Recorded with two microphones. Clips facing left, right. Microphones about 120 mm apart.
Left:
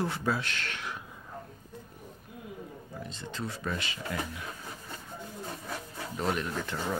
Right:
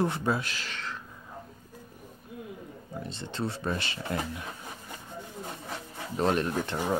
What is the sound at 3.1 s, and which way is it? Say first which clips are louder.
Speech: right 5 dB; 25° right (ahead or behind).